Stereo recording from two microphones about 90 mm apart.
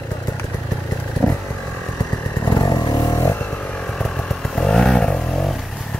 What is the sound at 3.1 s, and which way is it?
Vehicle, 25° left (ahead or behind).